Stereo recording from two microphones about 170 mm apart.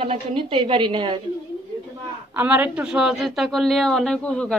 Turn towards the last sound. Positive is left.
turn(degrees=5)  # may be behind; listen again after turning